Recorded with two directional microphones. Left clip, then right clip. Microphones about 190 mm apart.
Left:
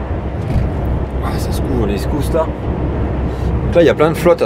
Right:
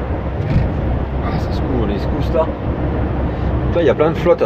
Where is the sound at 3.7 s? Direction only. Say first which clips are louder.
Left 4 dB; 45° left (ahead or behind).